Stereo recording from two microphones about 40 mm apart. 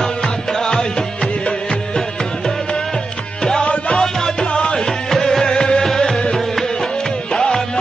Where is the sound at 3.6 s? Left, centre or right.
Left.